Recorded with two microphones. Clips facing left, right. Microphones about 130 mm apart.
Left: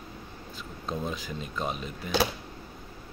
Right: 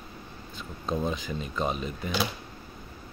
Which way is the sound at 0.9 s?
Centre (ahead or behind).